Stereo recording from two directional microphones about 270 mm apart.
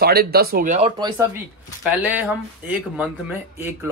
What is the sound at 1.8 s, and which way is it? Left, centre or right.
A man's voice, centre.